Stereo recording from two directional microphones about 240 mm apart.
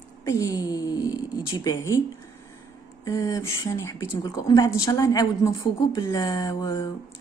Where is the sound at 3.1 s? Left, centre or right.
Centre.